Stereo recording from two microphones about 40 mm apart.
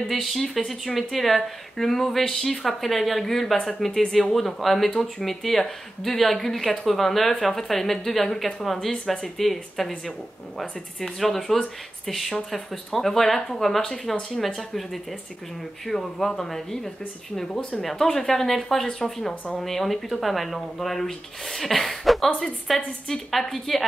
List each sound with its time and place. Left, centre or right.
0.1 s speech: centre
17.6 s speech: left
17.8 s speech: centre